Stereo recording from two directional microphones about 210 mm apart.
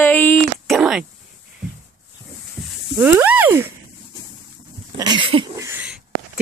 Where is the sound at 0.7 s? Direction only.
5° right (ahead or behind).